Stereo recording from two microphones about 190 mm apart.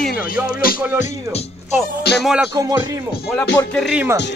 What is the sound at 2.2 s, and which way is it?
Speech, 5° right (ahead or behind).